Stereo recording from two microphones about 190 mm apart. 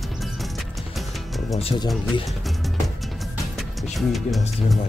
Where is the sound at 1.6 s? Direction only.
30° left (ahead or behind).